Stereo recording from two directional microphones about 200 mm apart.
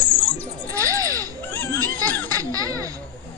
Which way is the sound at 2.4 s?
15° right (ahead or behind).